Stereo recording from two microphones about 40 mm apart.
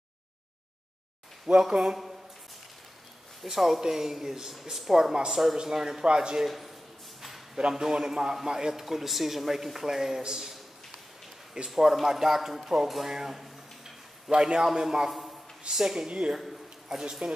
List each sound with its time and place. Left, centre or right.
1.5 s speech: centre
3.4 s speech: centre
6.0 s speech: right
6.4 s speech: centre
7.2 s a sound: centre
7.7 s speech: centre
13.1 s a sound: centre
14.3 s speech: right
14.6 s speech: centre
16.1 s speech: right
16.3 s a sound: centre
17.0 s speech: centre